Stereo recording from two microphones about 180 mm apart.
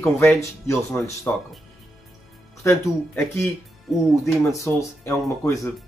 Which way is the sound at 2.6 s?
15° left (ahead or behind).